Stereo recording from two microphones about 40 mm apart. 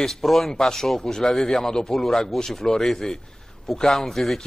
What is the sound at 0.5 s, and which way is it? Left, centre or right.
Speech, centre.